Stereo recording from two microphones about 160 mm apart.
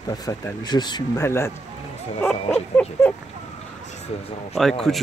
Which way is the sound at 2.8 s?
10° left (ahead or behind).